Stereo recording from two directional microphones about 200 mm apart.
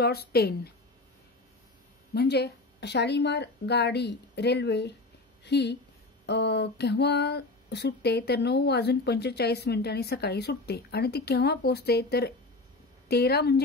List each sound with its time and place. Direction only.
0.0 s speech: 55° left (ahead or behind)
2.1 s speech: 55° left (ahead or behind)